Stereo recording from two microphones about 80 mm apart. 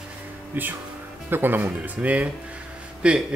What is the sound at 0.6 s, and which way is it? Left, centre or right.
Speech, right.